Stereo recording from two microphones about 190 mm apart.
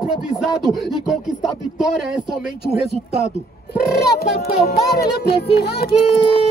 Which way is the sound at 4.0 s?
55° left (ahead or behind).